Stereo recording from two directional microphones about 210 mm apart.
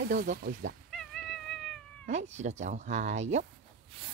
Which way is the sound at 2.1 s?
35° right (ahead or behind).